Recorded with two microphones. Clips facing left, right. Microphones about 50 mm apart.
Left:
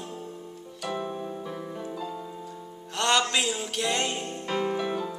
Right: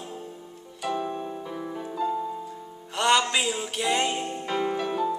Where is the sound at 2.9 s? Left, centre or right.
Centre.